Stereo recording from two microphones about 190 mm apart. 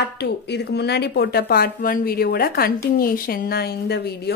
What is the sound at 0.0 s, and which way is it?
Speech, 60° left (ahead or behind).